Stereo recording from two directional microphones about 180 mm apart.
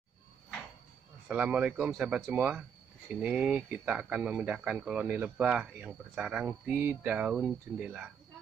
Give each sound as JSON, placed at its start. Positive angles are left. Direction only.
{"t": 1.3, "sound": "speech", "side_deg": -5}